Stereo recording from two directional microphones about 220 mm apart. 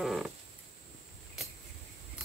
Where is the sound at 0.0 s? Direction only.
Centre (ahead or behind).